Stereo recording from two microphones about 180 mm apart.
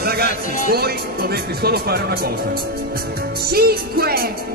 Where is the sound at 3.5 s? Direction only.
60° right (ahead or behind).